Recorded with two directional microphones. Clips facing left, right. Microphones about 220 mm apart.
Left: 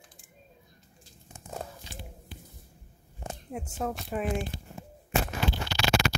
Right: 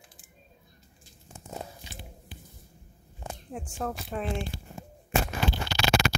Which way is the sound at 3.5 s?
5° left (ahead or behind).